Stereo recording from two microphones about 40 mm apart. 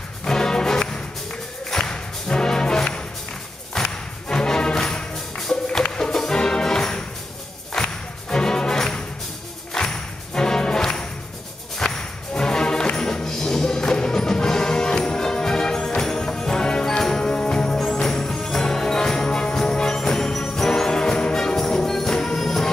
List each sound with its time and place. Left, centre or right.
0.2 s music: centre
18.0 s jingle bell: centre